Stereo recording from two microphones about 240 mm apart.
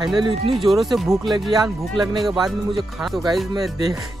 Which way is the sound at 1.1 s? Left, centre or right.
Centre.